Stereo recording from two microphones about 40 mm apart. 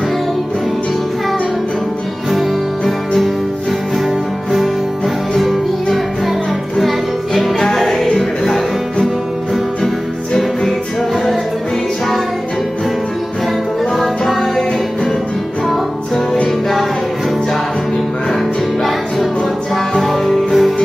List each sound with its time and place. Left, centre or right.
2.8 s music: centre
5.3 s music: centre
13.9 s music: centre
19.7 s music: centre